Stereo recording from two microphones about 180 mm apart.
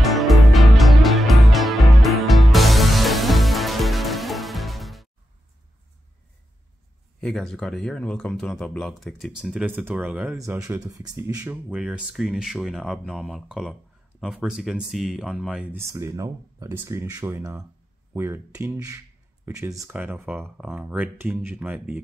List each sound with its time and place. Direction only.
0.0 s music: centre (ahead or behind)
7.2 s speech: centre (ahead or behind)
10.4 s speech: 15° right (ahead or behind)
15.9 s speech: 20° right (ahead or behind)